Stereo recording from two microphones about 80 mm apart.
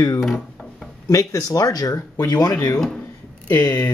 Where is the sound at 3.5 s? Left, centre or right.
Left.